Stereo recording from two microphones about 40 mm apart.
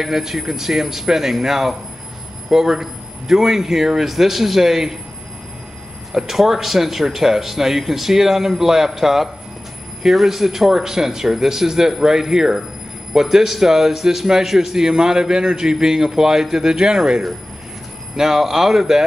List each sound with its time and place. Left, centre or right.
0.0 s a man's voice: centre
6.1 s a man's voice: centre